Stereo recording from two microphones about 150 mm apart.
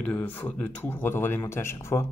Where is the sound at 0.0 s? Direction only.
10° left (ahead or behind).